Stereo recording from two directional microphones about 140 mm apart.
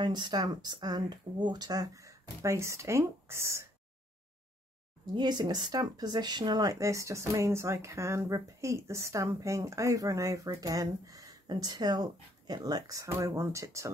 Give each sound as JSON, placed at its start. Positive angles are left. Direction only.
{"t": 0.0, "sound": "speech", "side_deg": -30}
{"t": 5.1, "sound": "speech", "side_deg": -30}